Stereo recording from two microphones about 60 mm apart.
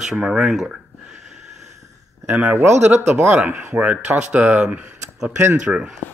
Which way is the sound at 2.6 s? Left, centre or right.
Right.